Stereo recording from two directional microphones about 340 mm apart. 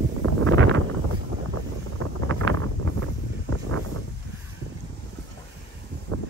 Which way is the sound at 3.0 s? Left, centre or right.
Right.